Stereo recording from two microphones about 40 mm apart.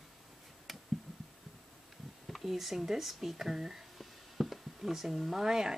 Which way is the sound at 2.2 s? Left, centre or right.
Centre.